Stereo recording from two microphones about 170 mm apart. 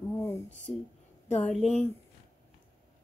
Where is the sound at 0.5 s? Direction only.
45° left (ahead or behind).